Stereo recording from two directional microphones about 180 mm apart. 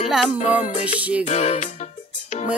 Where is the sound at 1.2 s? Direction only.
40° left (ahead or behind).